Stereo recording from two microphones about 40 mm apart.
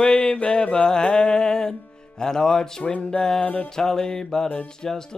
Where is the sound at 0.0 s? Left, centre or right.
Left.